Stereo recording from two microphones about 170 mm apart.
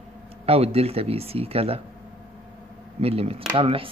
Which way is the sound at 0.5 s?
35° right (ahead or behind).